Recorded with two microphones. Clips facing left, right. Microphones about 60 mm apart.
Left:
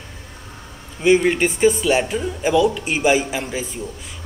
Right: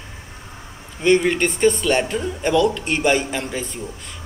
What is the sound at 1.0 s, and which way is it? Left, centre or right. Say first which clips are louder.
Speech: left 1 dB; centre.